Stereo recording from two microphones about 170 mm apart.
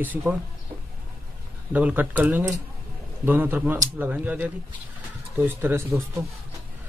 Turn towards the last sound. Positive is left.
turn(degrees=-15)  # may be behind; listen again after turning